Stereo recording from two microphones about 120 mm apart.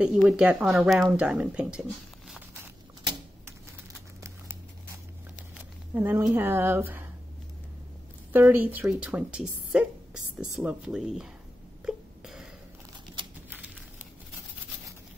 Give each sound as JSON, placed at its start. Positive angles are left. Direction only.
{"t": 0.0, "sound": "a woman's voice", "side_deg": -5}
{"t": 5.9, "sound": "a woman's voice", "side_deg": -20}
{"t": 8.3, "sound": "a woman's voice", "side_deg": -15}
{"t": 11.8, "sound": "a sound", "side_deg": -5}